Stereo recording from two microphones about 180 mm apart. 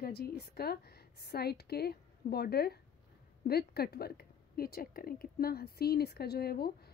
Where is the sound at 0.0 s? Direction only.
60° left (ahead or behind).